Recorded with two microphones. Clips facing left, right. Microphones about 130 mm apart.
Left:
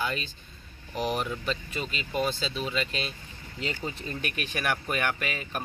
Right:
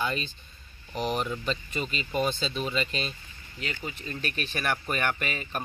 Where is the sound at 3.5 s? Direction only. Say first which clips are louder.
Left 3 dB; 25° left (ahead or behind).